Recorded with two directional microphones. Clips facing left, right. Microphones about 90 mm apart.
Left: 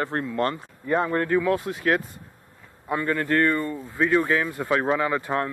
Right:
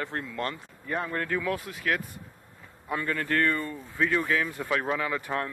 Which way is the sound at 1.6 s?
35° left (ahead or behind).